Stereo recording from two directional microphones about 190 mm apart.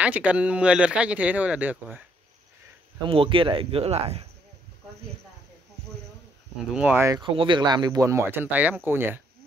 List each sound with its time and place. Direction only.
0.0 s speech: 5° right (ahead or behind)
3.1 s speech: 30° right (ahead or behind)
6.7 s speech: 10° right (ahead or behind)
7.2 s speech: 25° right (ahead or behind)